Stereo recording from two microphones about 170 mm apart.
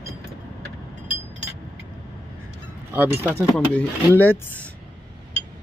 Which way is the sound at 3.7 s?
10° left (ahead or behind).